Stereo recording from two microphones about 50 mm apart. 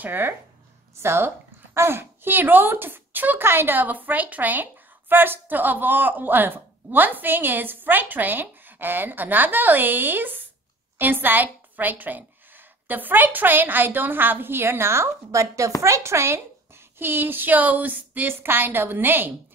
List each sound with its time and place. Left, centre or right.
0.0 s speech: right
0.9 s a woman's voice: right
15.8 s speech: right
17.0 s a woman's voice: right